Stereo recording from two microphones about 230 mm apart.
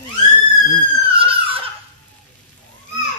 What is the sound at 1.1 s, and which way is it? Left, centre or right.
Belly laugh, right.